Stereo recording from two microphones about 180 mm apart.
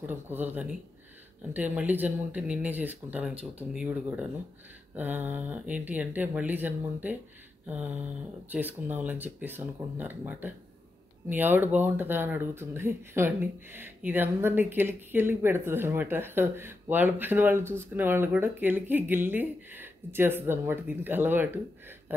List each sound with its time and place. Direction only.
0.0 s speech: 10° right (ahead or behind)